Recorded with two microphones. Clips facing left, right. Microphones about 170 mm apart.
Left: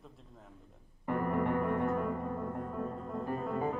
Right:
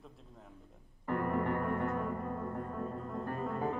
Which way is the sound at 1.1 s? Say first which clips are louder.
Left 2 dB; 5° left (ahead or behind).